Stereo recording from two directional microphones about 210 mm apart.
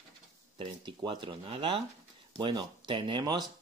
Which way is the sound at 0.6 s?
20° right (ahead or behind).